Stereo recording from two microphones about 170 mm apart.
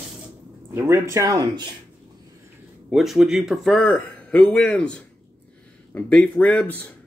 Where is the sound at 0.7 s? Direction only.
15° right (ahead or behind).